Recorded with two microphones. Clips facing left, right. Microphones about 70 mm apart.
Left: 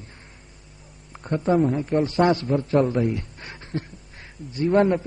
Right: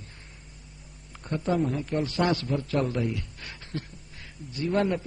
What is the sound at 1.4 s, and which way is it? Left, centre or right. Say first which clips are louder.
A man's voice: left 6 dB; left.